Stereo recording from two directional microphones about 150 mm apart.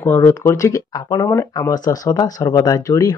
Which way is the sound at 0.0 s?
15° left (ahead or behind).